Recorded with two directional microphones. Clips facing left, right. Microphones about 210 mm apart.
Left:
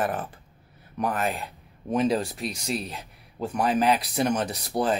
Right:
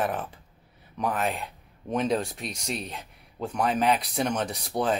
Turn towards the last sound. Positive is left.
turn(degrees=0)  # may be behind; listen again after turning